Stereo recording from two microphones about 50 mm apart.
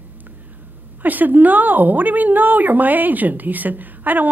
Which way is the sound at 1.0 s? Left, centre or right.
Right.